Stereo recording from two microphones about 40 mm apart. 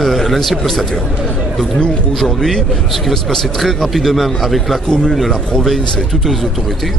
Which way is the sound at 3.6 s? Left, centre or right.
Centre.